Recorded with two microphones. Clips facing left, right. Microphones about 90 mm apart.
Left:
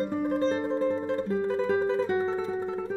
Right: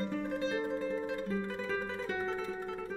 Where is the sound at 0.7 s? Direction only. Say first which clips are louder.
Left 8 dB; 35° left (ahead or behind).